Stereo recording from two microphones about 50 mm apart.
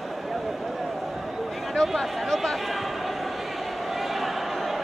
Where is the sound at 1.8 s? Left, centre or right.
Centre.